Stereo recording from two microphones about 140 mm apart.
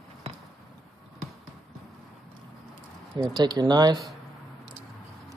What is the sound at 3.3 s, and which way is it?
Speech, 30° right (ahead or behind).